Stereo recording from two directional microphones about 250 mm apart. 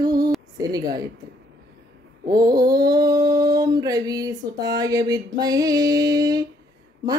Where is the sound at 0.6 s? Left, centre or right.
Centre.